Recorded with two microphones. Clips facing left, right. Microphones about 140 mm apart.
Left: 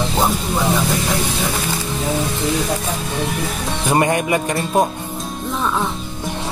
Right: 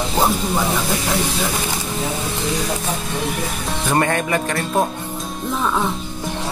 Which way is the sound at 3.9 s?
15° left (ahead or behind).